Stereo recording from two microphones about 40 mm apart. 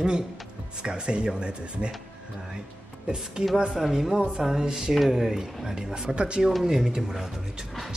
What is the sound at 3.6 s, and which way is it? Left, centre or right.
Speech, centre.